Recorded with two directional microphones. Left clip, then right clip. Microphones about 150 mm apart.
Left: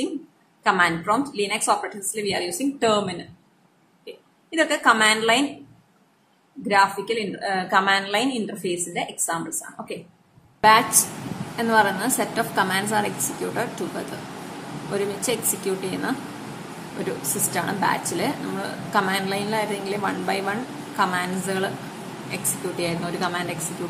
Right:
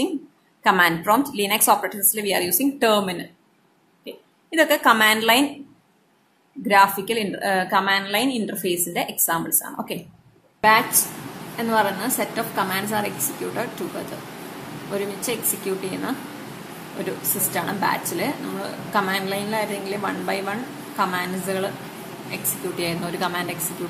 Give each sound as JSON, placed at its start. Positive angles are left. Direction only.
{"t": 0.7, "sound": "a woman's voice", "side_deg": -30}
{"t": 6.7, "sound": "a woman's voice", "side_deg": -30}
{"t": 7.7, "sound": "a woman's voice", "side_deg": -15}
{"t": 10.6, "sound": "a woman's voice", "side_deg": 0}
{"t": 22.8, "sound": "a woman's voice", "side_deg": -15}